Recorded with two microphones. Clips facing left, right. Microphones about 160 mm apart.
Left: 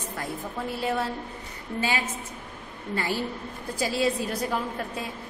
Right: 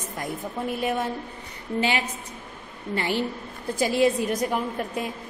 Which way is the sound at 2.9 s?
20° right (ahead or behind).